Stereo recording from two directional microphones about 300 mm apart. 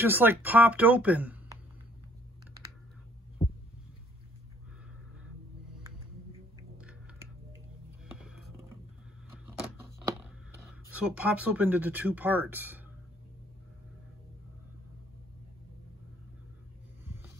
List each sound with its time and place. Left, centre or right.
0.0 s speech: centre
3.4 s heart sounds: centre
8.2 s music: centre
10.6 s speech: centre